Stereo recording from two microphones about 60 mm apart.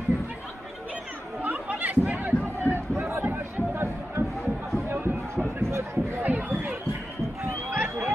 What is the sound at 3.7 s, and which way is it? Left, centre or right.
Music, right.